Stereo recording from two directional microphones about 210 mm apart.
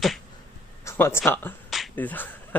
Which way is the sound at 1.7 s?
5° left (ahead or behind).